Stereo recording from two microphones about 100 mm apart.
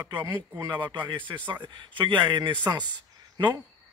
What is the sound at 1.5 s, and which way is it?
Speech, 50° right (ahead or behind).